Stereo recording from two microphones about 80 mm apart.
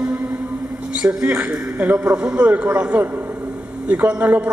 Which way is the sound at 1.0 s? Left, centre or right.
Right.